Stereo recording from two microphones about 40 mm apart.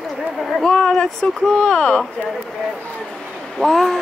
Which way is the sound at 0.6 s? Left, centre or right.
Centre.